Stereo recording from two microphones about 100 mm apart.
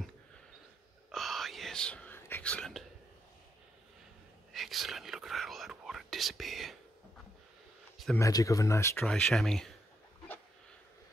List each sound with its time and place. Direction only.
1.1 s whispering: centre (ahead or behind); by 2.4 s 20° left (ahead or behind)
2.4 s speech: 10° left (ahead or behind)
4.5 s whispering: centre (ahead or behind)
8.2 s speech: 35° left (ahead or behind)
9.0 s speech: 5° left (ahead or behind)